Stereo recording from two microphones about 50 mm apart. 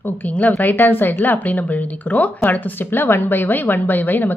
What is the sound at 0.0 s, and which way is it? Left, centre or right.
A woman's voice, left.